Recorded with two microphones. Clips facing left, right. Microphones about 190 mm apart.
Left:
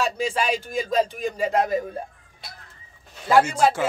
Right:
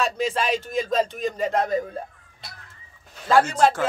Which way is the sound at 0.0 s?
Centre (ahead or behind).